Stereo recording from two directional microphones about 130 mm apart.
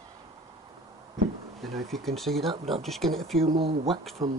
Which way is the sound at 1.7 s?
Centre (ahead or behind).